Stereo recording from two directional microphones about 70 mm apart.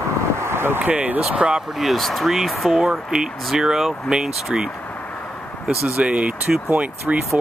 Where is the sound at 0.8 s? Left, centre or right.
Right.